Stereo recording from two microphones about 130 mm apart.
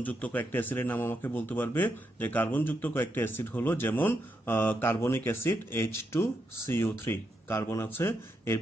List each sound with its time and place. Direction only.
0.0 s speech: 10° left (ahead or behind)